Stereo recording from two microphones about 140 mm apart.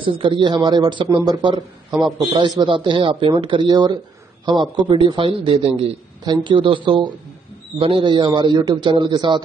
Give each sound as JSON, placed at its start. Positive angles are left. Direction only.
{"t": 0.0, "sound": "a man's voice", "side_deg": -35}
{"t": 6.2, "sound": "a man's voice", "side_deg": -35}